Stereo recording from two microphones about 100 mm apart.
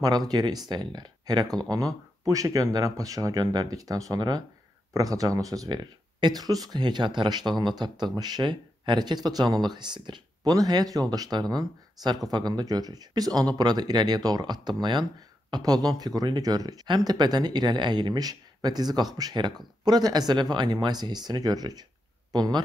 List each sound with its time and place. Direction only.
0.0 s speech: 40° right (ahead or behind)